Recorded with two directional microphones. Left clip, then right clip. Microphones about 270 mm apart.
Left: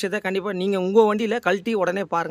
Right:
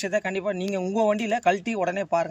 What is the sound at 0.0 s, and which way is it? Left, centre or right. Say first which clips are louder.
Speech: left 1 dB; centre.